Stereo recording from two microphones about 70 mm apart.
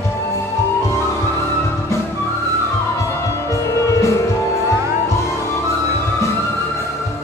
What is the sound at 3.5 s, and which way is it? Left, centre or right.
Music, left.